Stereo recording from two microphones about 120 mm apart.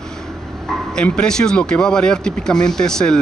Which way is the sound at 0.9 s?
10° left (ahead or behind).